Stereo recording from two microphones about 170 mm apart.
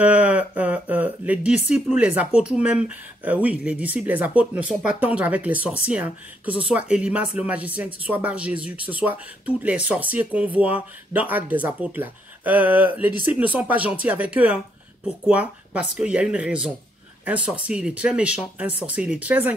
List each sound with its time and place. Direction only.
0.0 s speech: 10° right (ahead or behind)